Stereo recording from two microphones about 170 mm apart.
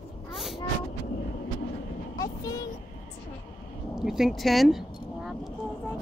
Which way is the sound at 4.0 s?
Centre (ahead or behind).